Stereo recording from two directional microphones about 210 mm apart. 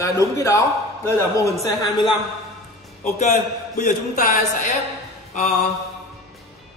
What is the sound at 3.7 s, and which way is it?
Speech, 40° left (ahead or behind).